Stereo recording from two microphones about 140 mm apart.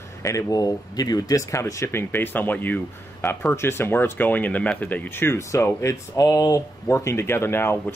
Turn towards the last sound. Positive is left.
turn(degrees=15)  # may be behind; listen again after turning